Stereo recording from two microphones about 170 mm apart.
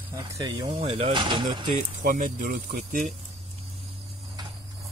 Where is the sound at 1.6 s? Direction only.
50° right (ahead or behind).